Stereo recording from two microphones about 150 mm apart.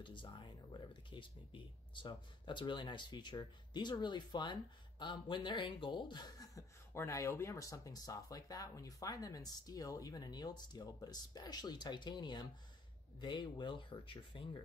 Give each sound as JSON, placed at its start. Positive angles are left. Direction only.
{"t": 0.0, "sound": "speech", "side_deg": 30}